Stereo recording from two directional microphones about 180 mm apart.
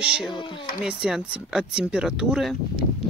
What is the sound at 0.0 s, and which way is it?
Speech, 5° right (ahead or behind).